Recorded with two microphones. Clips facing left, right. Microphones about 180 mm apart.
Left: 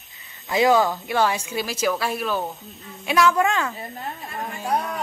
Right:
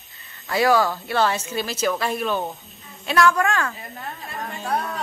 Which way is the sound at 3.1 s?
15° left (ahead or behind).